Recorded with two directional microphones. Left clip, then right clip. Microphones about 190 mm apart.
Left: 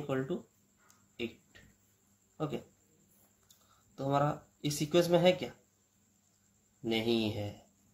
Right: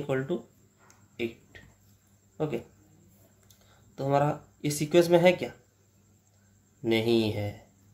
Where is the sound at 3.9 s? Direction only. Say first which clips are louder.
Right 5 dB; 10° right (ahead or behind).